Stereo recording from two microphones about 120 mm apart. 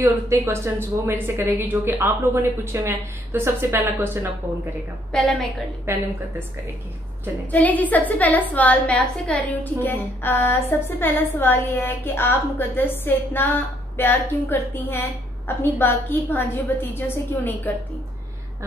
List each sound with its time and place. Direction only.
0.0 s a woman's voice: 20° right (ahead or behind)
5.1 s a woman's voice: centre (ahead or behind)
5.9 s a woman's voice: 20° right (ahead or behind)
7.5 s a woman's voice: 15° left (ahead or behind)